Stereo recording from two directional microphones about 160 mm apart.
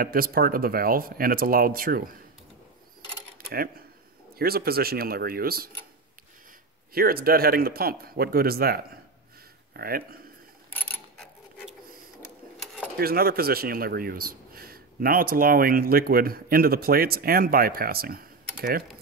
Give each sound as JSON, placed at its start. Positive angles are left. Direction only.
{"t": 0.0, "sound": "speech", "side_deg": -65}
{"t": 3.4, "sound": "speech", "side_deg": -70}
{"t": 6.9, "sound": "speech", "side_deg": -70}
{"t": 10.7, "sound": "a sound", "side_deg": 10}
{"t": 13.0, "sound": "speech", "side_deg": -70}